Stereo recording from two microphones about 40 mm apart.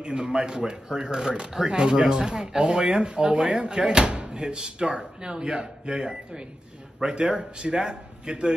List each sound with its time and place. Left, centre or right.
0.0 s speech: centre